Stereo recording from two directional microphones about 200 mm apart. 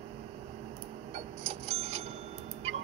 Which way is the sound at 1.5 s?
30° right (ahead or behind).